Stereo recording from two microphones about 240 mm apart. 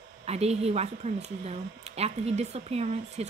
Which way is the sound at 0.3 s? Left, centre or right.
Right.